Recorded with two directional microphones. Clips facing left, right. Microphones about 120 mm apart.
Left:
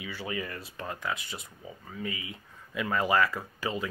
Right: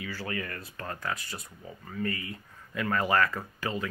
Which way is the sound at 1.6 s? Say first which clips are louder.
Right 5 dB; 10° left (ahead or behind).